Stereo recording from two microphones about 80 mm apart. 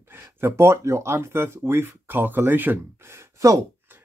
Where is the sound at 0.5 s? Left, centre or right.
Right.